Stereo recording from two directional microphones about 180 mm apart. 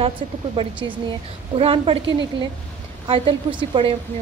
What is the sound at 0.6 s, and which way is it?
A woman's voice, 25° right (ahead or behind).